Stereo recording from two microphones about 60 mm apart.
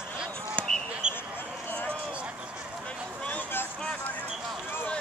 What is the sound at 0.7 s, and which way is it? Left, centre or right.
Basketball bounce, centre.